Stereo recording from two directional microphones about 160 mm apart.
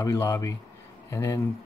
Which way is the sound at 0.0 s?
20° left (ahead or behind).